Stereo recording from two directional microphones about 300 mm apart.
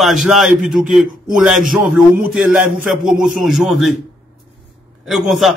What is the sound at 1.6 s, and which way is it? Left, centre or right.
Speech, right.